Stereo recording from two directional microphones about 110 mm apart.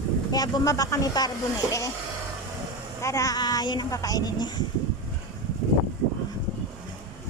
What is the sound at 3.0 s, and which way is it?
Speech, 30° left (ahead or behind).